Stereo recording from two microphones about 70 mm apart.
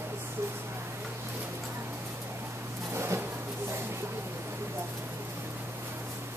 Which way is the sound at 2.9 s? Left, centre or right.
Right.